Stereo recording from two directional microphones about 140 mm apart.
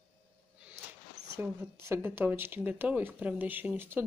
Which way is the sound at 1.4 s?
20° right (ahead or behind).